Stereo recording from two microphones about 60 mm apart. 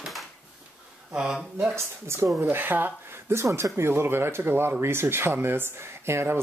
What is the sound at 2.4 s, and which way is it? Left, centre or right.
Speech, right.